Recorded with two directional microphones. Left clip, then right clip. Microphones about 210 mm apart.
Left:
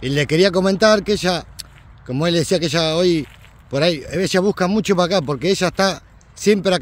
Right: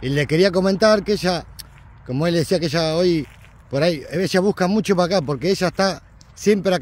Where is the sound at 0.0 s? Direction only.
5° left (ahead or behind).